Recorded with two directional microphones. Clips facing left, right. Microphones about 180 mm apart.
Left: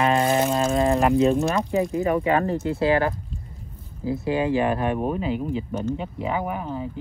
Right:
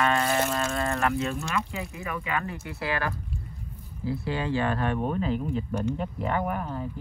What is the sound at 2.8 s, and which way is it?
Speech, 20° left (ahead or behind).